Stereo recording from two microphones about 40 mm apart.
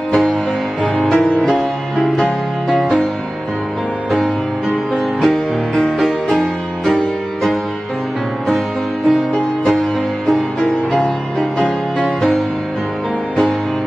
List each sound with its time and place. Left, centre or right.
1.0 s music: centre
1.5 s music: centre
4.9 s music: centre